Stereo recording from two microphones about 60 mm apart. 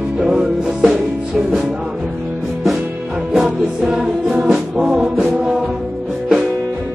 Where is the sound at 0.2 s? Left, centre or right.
Centre.